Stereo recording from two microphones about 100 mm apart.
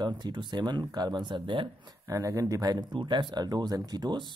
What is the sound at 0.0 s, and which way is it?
Speech, 50° right (ahead or behind).